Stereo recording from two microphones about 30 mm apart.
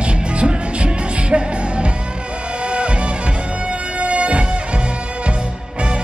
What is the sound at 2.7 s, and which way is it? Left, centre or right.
Music, right.